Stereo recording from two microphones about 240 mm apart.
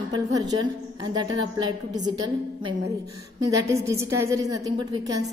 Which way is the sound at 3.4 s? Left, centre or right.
Centre.